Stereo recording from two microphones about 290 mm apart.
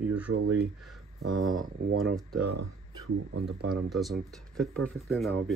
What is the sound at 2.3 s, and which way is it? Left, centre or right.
Speech, right.